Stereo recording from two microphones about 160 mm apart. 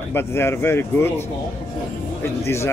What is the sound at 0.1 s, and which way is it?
Speech, 15° left (ahead or behind).